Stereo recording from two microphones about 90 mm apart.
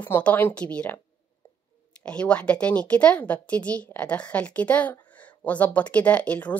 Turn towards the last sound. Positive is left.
turn(degrees=15)  # may be behind; listen again after turning